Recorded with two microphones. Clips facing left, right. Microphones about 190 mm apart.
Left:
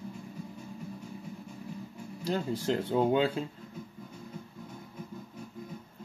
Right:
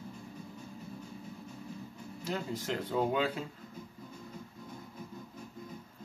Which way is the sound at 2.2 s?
30° left (ahead or behind).